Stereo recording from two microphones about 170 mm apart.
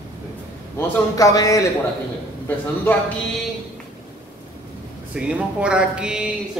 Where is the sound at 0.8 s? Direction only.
20° left (ahead or behind).